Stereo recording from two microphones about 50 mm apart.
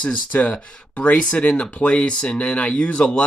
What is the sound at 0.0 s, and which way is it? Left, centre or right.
Speech, left.